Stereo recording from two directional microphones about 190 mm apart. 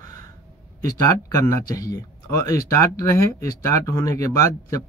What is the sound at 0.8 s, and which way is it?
Speech, 15° left (ahead or behind).